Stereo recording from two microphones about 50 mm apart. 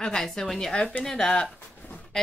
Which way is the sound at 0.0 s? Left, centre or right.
Centre.